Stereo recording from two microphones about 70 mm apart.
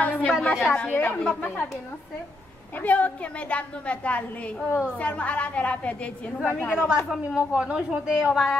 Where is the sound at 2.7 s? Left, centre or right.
Left.